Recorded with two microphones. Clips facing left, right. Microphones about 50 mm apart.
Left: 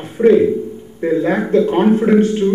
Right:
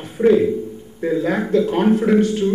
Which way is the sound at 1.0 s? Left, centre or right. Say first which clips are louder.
Left 3 dB; centre.